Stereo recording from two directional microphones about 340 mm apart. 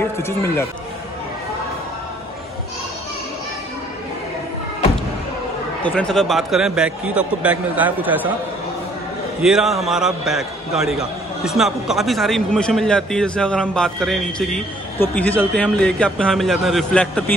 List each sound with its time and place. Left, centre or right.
0.0 s speech: centre
5.8 s a man's voice: centre
9.4 s a man's voice: centre